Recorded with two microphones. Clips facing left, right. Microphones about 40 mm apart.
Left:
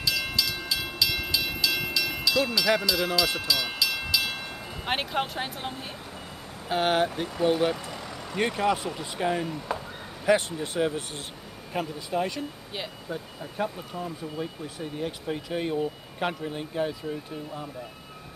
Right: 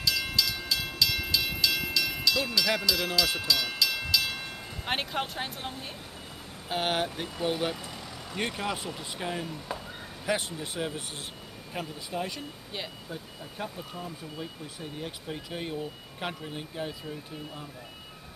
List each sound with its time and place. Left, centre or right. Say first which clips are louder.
0.0 s train: left 1 dB; centre
6.7 s speech: left 5 dB; centre
7.7 s speech: left 4 dB; centre
15.0 s speech: left 7 dB; centre